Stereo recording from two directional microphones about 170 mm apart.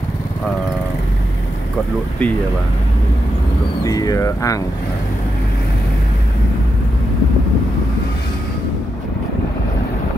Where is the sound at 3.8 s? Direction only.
20° left (ahead or behind).